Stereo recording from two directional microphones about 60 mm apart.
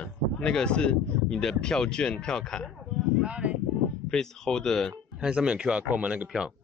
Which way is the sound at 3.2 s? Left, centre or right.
Centre.